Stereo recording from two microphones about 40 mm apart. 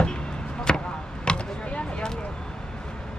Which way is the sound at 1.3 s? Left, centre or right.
Left.